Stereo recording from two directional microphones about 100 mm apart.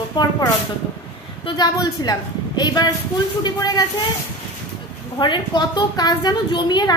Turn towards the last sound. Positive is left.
turn(degrees=45)  # may be behind; listen again after turning